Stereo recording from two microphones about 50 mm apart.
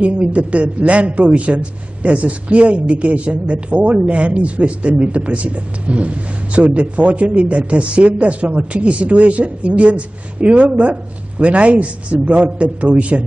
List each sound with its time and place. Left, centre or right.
0.0 s a man's voice: right